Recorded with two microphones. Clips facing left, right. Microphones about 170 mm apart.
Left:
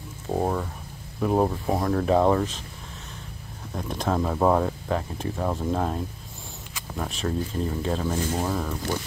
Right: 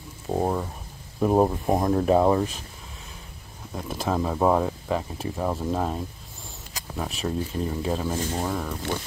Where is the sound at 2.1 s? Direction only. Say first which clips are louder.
Even; 10° right (ahead or behind).